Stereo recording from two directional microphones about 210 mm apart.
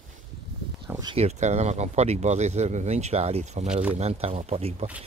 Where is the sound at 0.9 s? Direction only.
20° right (ahead or behind).